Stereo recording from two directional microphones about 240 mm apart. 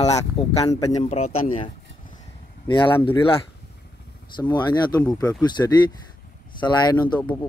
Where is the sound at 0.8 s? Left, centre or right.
Left.